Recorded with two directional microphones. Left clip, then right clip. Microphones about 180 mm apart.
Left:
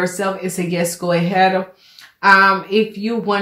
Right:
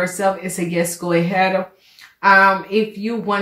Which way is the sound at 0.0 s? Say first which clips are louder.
Right 1 dB; 25° left (ahead or behind).